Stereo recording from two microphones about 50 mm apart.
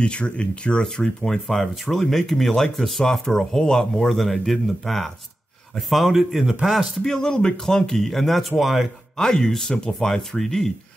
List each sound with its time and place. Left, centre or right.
0.0 s speech: left; by 6.9 s centre
7.0 s speech: centre
9.1 s speech: centre